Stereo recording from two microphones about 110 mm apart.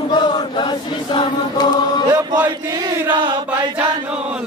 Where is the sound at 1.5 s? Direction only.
40° left (ahead or behind).